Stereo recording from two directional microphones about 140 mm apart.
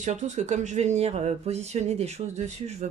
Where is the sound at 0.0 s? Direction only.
55° right (ahead or behind).